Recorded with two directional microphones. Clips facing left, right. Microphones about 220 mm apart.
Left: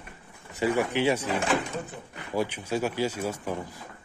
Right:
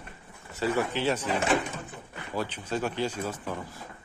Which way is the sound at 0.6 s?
15° left (ahead or behind).